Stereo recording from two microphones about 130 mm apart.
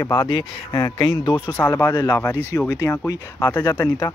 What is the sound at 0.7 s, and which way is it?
Speech, 35° left (ahead or behind).